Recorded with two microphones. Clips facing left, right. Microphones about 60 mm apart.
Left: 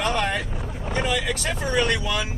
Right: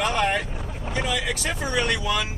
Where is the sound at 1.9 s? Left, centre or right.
Centre.